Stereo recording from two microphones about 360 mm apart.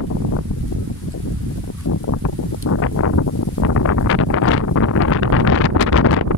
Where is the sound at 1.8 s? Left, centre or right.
Left.